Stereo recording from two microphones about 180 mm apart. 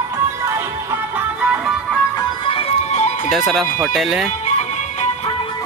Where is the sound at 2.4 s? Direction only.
30° left (ahead or behind).